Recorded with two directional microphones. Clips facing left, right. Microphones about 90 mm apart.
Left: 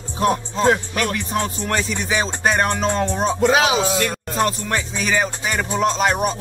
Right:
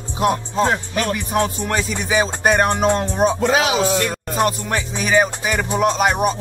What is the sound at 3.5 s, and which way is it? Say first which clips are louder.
Speech: left 1 dB; 25° left (ahead or behind).